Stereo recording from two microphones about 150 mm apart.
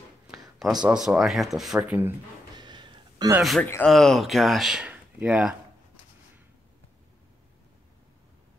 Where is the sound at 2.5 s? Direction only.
30° right (ahead or behind).